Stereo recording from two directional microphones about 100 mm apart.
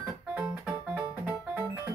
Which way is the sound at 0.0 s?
15° right (ahead or behind).